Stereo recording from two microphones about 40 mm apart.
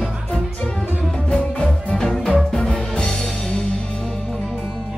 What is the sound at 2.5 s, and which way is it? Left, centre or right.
Music, centre.